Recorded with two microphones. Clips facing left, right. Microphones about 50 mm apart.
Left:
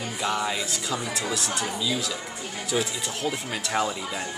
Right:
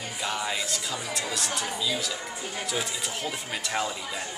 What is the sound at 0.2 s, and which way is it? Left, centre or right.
Speech, centre.